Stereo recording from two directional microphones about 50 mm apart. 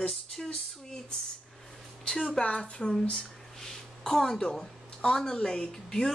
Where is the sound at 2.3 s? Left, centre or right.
Left.